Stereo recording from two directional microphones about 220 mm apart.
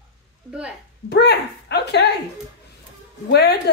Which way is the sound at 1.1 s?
50° left (ahead or behind).